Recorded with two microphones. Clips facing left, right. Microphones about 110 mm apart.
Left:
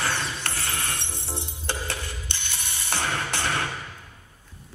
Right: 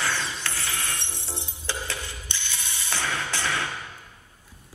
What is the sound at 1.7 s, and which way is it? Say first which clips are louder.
Music: left 1 dB; 60° left (ahead or behind).